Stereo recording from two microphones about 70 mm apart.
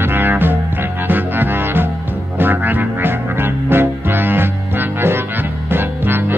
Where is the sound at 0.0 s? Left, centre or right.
Right.